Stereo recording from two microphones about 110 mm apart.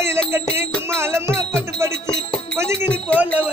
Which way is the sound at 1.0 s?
25° right (ahead or behind).